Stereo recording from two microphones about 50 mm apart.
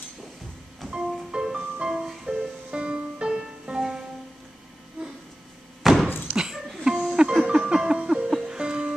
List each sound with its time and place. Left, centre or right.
0.8 s music: centre
2.7 s music: right
5.8 s thunk: centre
6.3 s music: centre
8.5 s music: centre